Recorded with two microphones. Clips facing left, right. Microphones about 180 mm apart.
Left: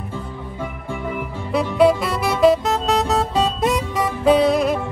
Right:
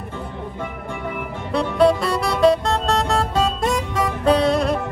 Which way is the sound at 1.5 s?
Centre (ahead or behind).